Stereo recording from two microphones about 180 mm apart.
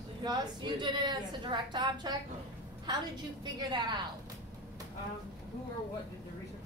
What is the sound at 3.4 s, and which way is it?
Speech, 25° right (ahead or behind).